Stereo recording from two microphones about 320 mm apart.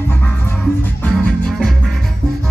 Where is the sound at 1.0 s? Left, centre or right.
Centre.